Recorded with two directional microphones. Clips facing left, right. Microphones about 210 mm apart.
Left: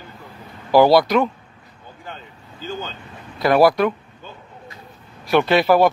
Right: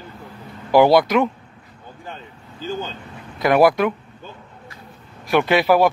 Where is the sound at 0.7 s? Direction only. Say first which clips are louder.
Even; 15° right (ahead or behind).